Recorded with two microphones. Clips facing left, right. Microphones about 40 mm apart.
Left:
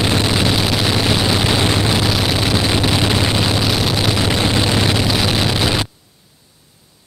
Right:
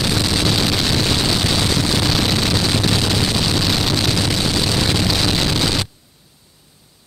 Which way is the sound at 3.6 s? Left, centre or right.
Centre.